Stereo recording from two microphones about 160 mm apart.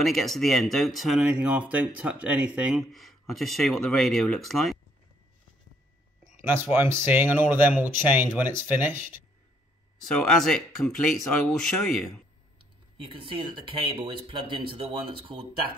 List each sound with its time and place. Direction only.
0.0 s speech: centre (ahead or behind)
6.4 s speech: 15° right (ahead or behind)
10.1 s speech: 5° left (ahead or behind)
13.0 s speech: 30° right (ahead or behind)